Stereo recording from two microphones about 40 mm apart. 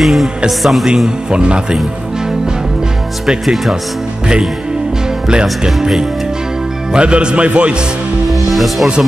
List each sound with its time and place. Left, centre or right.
0.0 s music: centre
0.5 s speech: centre
0.8 s speech: centre
3.3 s speech: centre
5.3 s speech: right
5.7 s speech: centre
6.9 s speech: right
8.3 s music: centre